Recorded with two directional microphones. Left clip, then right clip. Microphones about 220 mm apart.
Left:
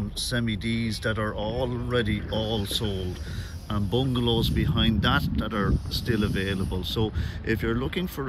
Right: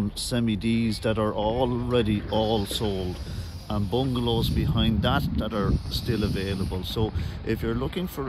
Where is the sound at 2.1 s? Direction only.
45° right (ahead or behind).